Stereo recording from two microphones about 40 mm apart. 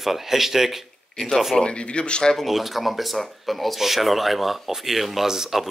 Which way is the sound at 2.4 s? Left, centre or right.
Centre.